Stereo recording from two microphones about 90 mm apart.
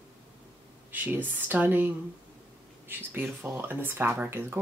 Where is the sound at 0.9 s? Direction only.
20° right (ahead or behind).